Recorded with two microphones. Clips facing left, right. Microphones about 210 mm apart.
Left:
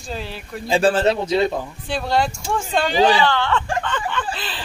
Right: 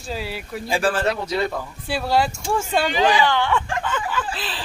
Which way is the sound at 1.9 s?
5° right (ahead or behind).